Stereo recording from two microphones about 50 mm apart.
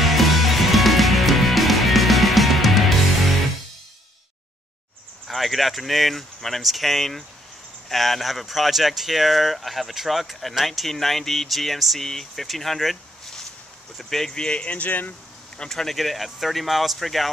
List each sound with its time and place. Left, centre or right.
0.0 s music: centre
5.3 s speech: centre
14.3 s speech: centre; by 15.1 s left
15.7 s speech: centre